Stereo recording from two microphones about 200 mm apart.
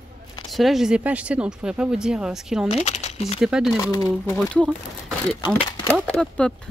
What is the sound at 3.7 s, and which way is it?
Speech, 15° left (ahead or behind).